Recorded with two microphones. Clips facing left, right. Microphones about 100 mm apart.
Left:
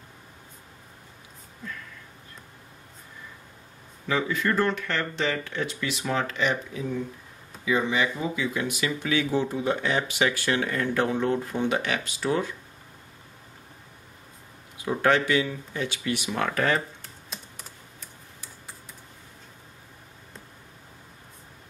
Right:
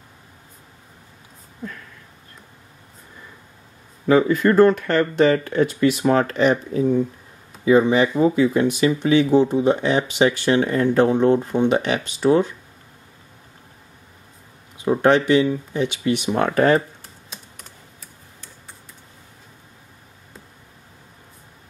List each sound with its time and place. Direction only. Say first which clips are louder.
4.1 s speech: right 10 dB; 45° right (ahead or behind); by 12.4 s 25° right (ahead or behind)
14.9 s speech: right 7 dB; 25° right (ahead or behind)
17.3 s typing: even; centre (ahead or behind)